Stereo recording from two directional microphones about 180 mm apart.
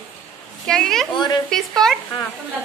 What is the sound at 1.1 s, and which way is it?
Speech, 25° left (ahead or behind).